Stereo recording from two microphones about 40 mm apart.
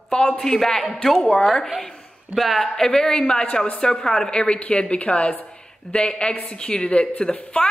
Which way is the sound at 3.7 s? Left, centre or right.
Centre.